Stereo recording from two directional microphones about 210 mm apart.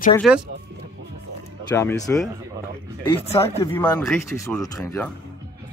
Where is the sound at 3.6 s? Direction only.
10° left (ahead or behind).